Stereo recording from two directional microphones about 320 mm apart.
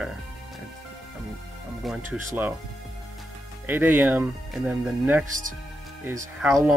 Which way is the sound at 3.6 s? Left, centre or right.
Centre.